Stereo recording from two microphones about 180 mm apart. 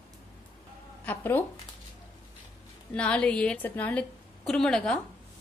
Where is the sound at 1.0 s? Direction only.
10° left (ahead or behind).